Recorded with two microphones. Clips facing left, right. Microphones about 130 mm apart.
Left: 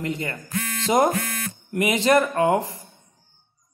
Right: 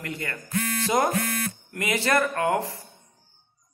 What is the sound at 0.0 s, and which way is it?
Speech, 20° left (ahead or behind).